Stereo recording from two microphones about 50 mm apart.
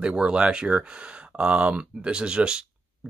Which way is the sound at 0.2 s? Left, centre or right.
Centre.